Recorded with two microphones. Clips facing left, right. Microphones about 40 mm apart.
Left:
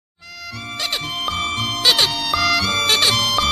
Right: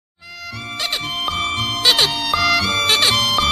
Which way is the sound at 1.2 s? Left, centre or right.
Centre.